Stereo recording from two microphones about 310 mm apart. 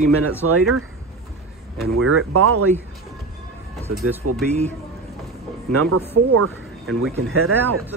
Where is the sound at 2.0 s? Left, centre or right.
Right.